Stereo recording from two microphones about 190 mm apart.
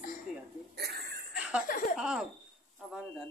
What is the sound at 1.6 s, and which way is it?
Speech, 45° left (ahead or behind).